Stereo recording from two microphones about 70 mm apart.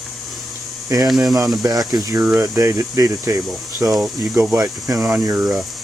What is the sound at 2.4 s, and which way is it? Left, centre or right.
Speech, right.